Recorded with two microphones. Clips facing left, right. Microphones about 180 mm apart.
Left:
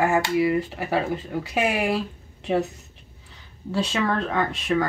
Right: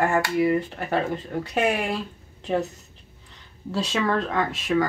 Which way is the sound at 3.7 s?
Centre (ahead or behind).